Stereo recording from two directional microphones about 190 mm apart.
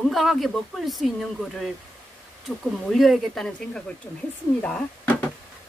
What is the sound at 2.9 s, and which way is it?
Speech, centre (ahead or behind).